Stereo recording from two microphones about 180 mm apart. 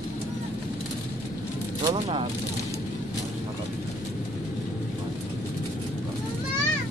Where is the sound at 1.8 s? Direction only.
30° right (ahead or behind).